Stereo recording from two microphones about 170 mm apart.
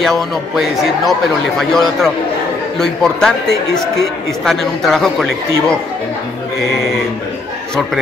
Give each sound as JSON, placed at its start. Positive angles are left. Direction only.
{"t": 0.0, "sound": "a man's voice", "side_deg": 0}